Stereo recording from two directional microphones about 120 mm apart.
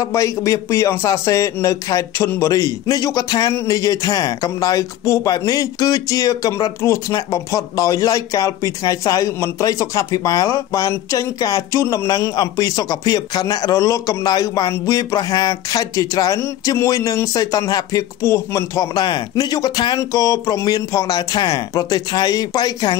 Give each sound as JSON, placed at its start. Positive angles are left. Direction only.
{"t": 0.0, "sound": "speech", "side_deg": 25}
{"t": 18.9, "sound": "speech", "side_deg": 35}